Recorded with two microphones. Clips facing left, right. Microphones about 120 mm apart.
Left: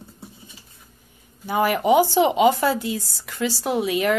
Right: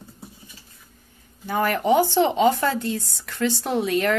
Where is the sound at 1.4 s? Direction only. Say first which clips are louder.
Left 2 dB; 10° left (ahead or behind).